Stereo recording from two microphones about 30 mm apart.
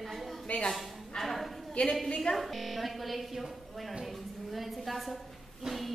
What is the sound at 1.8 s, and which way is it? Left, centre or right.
Speech, left.